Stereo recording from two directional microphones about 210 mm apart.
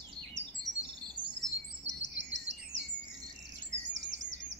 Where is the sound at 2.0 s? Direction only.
60° right (ahead or behind).